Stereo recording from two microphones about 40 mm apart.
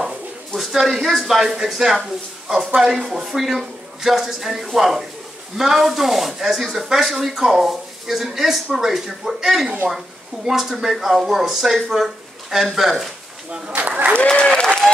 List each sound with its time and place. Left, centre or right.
0.6 s speech: centre
13.7 s applause: right
14.1 s speech: left